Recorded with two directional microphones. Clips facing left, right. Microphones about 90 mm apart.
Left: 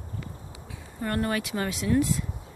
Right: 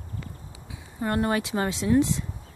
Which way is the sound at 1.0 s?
25° right (ahead or behind).